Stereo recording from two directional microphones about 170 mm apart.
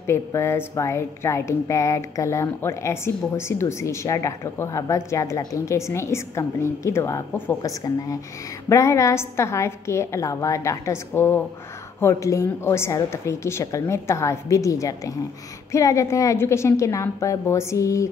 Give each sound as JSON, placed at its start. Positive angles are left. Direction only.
{"t": 0.0, "sound": "a woman's voice", "side_deg": 15}